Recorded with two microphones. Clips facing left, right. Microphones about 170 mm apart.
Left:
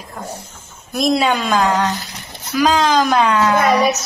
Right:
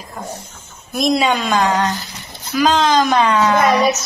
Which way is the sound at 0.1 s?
10° left (ahead or behind).